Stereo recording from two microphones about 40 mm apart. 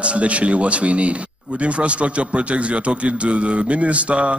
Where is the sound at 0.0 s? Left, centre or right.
Right.